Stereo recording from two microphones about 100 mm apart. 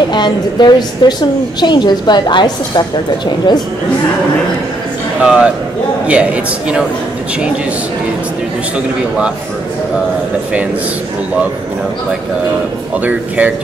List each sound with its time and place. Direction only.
0.1 s a woman's voice: 45° left (ahead or behind)
5.2 s a man's voice: 10° right (ahead or behind)